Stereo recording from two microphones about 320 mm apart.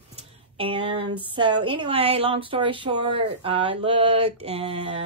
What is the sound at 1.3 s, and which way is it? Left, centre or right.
A woman's voice, centre.